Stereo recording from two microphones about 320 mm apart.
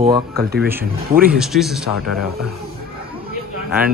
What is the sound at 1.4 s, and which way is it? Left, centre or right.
Speech, centre.